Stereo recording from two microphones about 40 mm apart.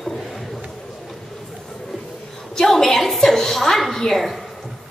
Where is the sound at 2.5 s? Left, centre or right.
Centre.